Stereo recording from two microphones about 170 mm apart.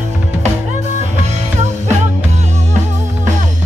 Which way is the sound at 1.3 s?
40° right (ahead or behind).